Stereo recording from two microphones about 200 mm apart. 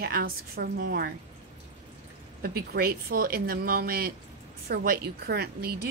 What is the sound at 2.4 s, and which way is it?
A woman's voice, 50° right (ahead or behind).